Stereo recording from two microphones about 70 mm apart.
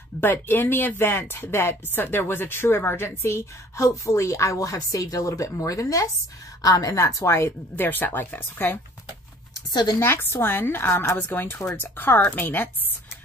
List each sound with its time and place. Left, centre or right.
0.2 s speech: left
9.7 s speech: left
9.9 s a woman's voice: left